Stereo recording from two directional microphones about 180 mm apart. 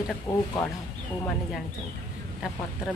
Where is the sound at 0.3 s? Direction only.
20° left (ahead or behind).